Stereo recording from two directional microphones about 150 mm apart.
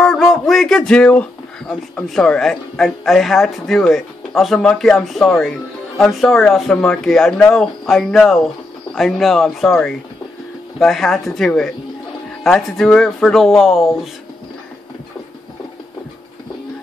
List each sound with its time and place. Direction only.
0.0 s speech: centre (ahead or behind)